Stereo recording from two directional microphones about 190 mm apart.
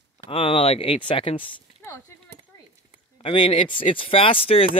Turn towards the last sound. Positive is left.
turn(degrees=30)  # may be behind; listen again after turning